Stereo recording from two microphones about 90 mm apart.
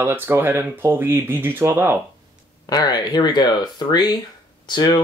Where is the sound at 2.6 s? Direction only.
45° left (ahead or behind).